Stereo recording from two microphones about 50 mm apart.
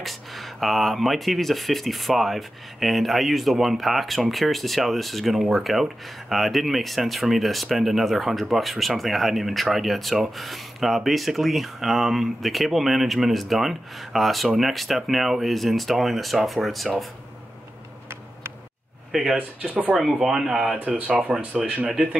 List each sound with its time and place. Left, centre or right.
0.0 s speech: centre
19.1 s speech: centre
21.3 s speech: right
21.8 s speech: centre